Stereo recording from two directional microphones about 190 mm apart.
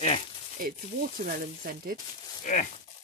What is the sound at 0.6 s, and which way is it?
Speech, 50° right (ahead or behind).